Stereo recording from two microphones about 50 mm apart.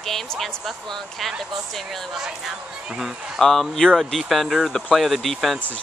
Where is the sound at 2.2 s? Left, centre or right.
Centre.